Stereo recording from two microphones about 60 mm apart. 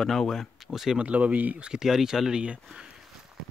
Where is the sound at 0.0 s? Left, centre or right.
Centre.